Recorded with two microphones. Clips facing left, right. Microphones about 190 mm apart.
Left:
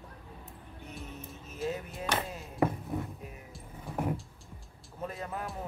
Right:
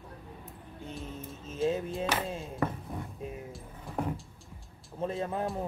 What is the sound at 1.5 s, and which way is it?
Speech, 25° right (ahead or behind).